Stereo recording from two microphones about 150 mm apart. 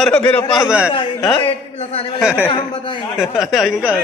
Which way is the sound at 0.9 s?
35° left (ahead or behind).